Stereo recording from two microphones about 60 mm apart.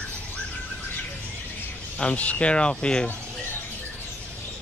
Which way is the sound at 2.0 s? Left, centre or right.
Left.